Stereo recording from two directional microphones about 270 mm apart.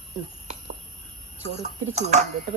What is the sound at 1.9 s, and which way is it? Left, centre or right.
Speech, right.